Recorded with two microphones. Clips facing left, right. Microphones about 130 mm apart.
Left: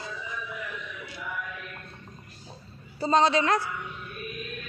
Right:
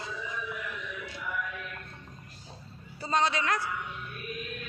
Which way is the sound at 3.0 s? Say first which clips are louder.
Left 6 dB; 30° left (ahead or behind).